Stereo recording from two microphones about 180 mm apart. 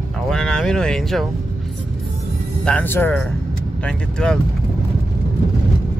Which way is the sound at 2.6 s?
10° left (ahead or behind).